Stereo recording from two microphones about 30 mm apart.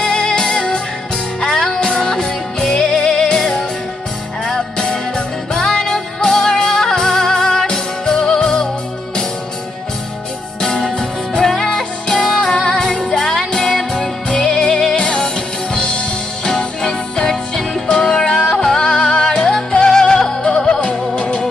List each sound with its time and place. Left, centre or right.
0.0 s music: left
4.5 s music: left
10.6 s music: centre
13.2 s music: centre; by 21.5 s left